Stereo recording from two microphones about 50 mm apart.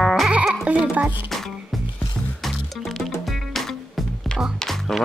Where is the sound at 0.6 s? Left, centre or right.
Right.